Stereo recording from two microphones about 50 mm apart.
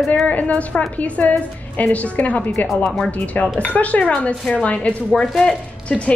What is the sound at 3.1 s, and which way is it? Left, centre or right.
A woman's voice, left.